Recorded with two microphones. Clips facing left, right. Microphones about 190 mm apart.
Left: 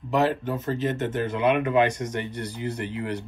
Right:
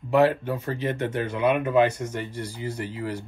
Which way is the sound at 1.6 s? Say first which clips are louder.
Right 1 dB; 5° right (ahead or behind).